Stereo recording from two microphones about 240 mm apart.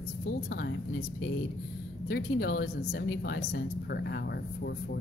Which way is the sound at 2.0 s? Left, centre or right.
Left.